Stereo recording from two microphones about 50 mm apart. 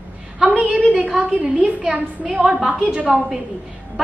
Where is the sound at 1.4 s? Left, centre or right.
Centre.